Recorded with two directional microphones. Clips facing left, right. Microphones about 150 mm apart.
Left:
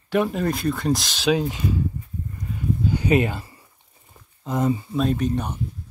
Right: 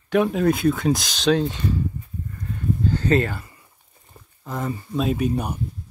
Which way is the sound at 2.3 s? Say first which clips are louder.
Even; 10° left (ahead or behind).